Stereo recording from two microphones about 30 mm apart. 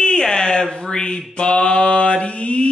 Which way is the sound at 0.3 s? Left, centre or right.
Left.